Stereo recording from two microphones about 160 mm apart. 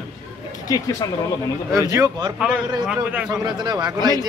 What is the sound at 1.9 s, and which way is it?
Speech, 20° right (ahead or behind).